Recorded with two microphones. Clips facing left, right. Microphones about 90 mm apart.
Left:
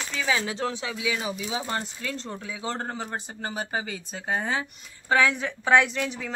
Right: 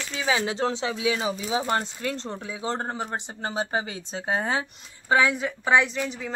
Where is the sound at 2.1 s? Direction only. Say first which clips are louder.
Right 2 dB; 20° right (ahead or behind); by 4.6 s 40° right (ahead or behind).